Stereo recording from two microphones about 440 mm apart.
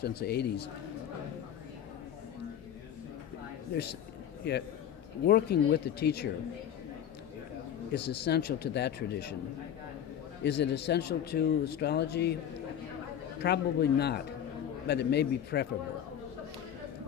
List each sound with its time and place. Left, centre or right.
0.0 s speech: left
4.4 s speech: left
7.9 s speech: left
10.4 s speech: left
13.4 s speech: left